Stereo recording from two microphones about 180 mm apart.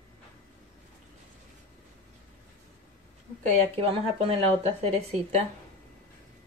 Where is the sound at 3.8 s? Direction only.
35° right (ahead or behind).